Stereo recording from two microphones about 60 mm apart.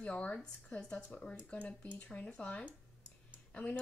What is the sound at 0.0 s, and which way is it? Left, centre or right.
Speech, left.